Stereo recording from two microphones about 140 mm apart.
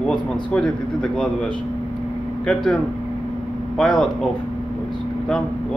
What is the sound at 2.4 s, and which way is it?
Speech, 5° left (ahead or behind).